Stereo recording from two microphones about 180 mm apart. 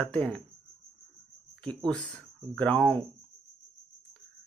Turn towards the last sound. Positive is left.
turn(degrees=-30)  # may be behind; listen again after turning